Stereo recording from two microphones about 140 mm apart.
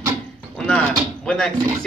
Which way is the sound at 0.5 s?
5° left (ahead or behind).